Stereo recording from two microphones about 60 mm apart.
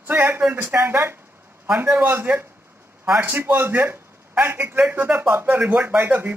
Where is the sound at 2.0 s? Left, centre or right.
Right.